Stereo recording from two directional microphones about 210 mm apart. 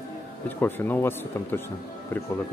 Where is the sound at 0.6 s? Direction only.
10° left (ahead or behind).